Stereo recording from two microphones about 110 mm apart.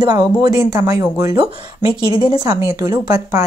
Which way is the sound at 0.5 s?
75° left (ahead or behind).